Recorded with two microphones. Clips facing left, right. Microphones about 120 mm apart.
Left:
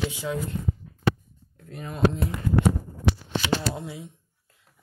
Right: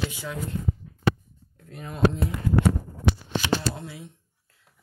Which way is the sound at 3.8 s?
20° left (ahead or behind).